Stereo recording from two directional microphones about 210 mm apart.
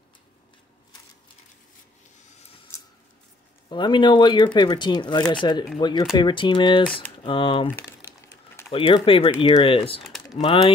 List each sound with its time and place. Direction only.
2.7 s scissors: 15° left (ahead or behind)
3.6 s speech: 20° left (ahead or behind)
8.7 s speech: 25° left (ahead or behind)